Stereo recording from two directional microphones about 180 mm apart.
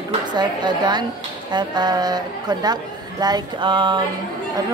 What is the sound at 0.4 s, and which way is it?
Speech, 25° right (ahead or behind).